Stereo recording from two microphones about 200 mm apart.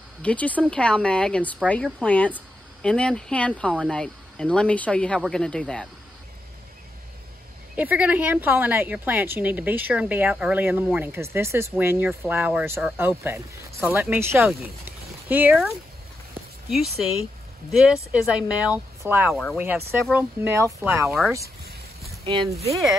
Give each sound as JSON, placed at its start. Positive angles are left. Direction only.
{"t": 0.2, "sound": "speech", "side_deg": 5}
{"t": 7.7, "sound": "a woman's voice", "side_deg": -5}
{"t": 18.1, "sound": "a woman's voice", "side_deg": -5}
{"t": 19.3, "sound": "speech", "side_deg": 0}
{"t": 19.9, "sound": "a woman's voice", "side_deg": -10}
{"t": 22.2, "sound": "speech", "side_deg": -30}